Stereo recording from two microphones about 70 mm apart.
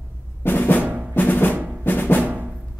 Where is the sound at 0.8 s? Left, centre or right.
Right.